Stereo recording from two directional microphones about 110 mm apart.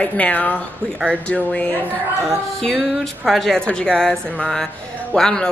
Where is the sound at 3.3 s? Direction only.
5° left (ahead or behind).